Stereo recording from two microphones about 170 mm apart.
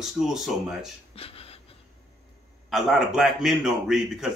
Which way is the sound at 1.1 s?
35° left (ahead or behind).